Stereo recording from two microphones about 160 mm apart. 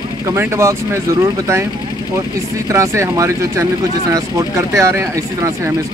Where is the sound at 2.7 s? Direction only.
20° right (ahead or behind).